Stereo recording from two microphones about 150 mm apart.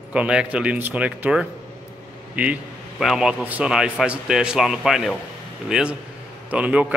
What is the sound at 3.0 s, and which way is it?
Speech, 5° right (ahead or behind).